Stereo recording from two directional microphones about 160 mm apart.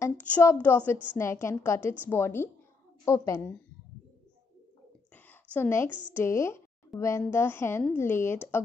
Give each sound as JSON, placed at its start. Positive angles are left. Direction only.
{"t": 0.0, "sound": "a woman's voice", "side_deg": 15}
{"t": 5.1, "sound": "a sound", "side_deg": 10}
{"t": 6.1, "sound": "a woman's voice", "side_deg": 15}